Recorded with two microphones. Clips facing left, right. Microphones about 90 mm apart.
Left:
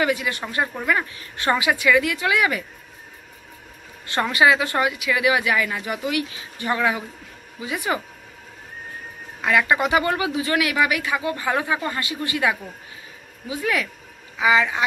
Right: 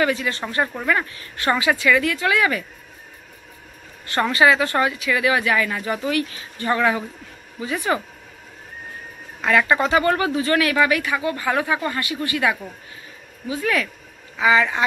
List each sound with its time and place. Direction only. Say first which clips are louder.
0.0 s speech: right 1 dB; 15° left (ahead or behind)
4.1 s speech: right 1 dB; 15° left (ahead or behind)
9.4 s speech: right 1 dB; 15° left (ahead or behind)